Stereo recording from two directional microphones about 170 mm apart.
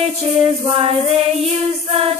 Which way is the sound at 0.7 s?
35° right (ahead or behind).